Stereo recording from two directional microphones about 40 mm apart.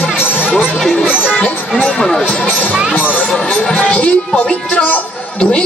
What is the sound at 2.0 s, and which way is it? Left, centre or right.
Speech, centre.